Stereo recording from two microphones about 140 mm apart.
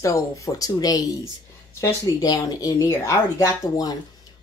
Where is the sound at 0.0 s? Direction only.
25° left (ahead or behind).